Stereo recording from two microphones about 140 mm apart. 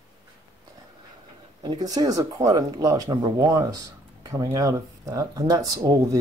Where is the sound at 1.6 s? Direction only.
30° right (ahead or behind).